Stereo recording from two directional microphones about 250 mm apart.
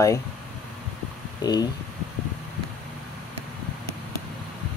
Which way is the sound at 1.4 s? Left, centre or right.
Centre.